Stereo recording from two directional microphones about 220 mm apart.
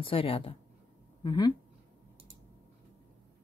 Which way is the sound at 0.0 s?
25° left (ahead or behind).